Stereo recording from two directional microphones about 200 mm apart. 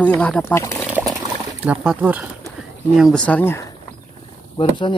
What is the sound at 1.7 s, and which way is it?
Speech, 5° right (ahead or behind).